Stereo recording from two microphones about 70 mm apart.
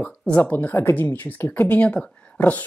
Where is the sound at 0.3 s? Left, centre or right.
Left.